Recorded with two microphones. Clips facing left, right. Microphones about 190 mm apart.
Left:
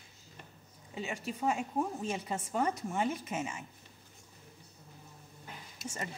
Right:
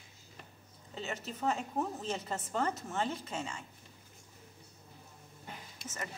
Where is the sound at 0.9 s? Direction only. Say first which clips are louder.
Left 2 dB; 10° left (ahead or behind).